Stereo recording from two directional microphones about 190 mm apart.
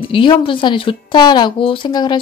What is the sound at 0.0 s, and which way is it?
A woman's voice, 25° left (ahead or behind).